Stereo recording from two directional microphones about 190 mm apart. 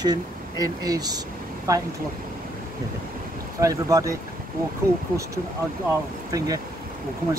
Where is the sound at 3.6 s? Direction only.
15° right (ahead or behind).